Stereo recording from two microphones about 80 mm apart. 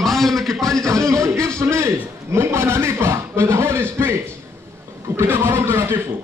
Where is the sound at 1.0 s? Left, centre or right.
Right.